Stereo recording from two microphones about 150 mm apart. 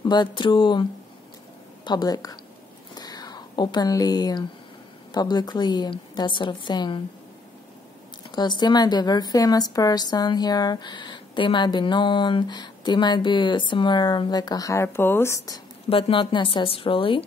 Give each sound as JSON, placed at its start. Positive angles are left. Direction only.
{"t": 0.0, "sound": "speech", "side_deg": 30}
{"t": 1.9, "sound": "a woman's voice", "side_deg": 30}
{"t": 2.9, "sound": "a sound", "side_deg": 25}
{"t": 5.1, "sound": "a woman's voice", "side_deg": 25}
{"t": 8.3, "sound": "a woman's voice", "side_deg": 30}
{"t": 15.9, "sound": "speech", "side_deg": 35}